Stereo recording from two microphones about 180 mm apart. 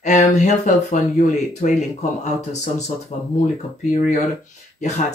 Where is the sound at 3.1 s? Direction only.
45° left (ahead or behind).